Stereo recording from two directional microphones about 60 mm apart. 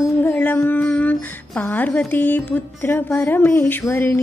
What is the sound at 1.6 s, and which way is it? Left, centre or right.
Humming, left.